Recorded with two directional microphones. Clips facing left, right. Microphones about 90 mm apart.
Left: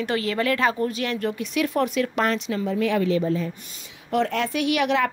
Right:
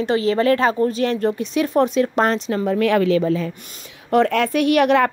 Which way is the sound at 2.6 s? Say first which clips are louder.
Right 6 dB; 60° right (ahead or behind).